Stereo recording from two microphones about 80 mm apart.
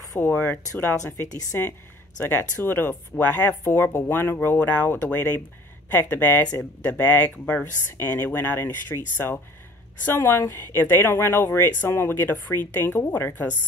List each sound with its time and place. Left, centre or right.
0.2 s speech: left